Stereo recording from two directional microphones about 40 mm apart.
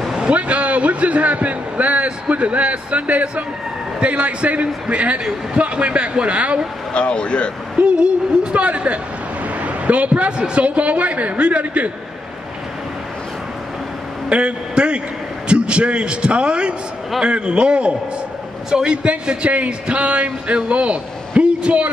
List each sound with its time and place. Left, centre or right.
0.3 s a man's voice: right
6.9 s speech: left
7.8 s a man's voice: right
14.3 s a man's voice: right
18.7 s a man's voice: centre
19.0 s a man's voice: right